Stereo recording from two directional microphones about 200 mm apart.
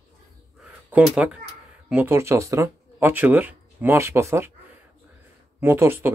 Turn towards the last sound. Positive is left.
turn(degrees=-10)  # may be behind; listen again after turning